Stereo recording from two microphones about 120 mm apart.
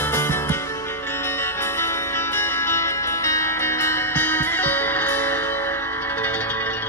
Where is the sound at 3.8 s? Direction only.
15° left (ahead or behind).